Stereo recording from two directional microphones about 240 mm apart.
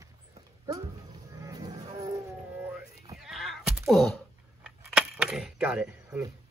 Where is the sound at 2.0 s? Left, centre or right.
Centre.